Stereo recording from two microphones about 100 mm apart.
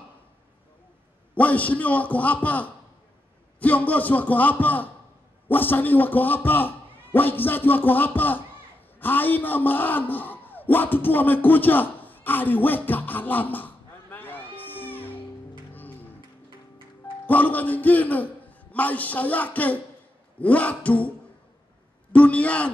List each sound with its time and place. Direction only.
1.3 s a man's voice: 15° left (ahead or behind)
14.8 s music: 20° left (ahead or behind)
17.3 s a man's voice: 15° left (ahead or behind)
22.1 s a man's voice: 15° left (ahead or behind)